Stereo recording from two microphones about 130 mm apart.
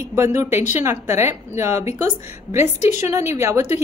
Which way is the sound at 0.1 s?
20° right (ahead or behind).